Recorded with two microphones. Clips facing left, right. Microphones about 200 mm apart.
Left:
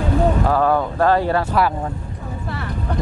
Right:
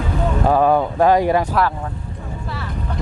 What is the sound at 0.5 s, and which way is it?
Speech, 15° right (ahead or behind).